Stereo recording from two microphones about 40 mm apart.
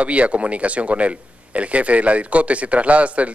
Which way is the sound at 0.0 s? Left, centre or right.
Right.